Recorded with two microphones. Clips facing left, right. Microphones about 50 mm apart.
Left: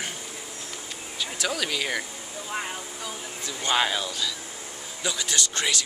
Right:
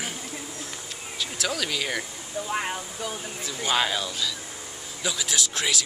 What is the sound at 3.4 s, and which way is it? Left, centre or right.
Speech, centre.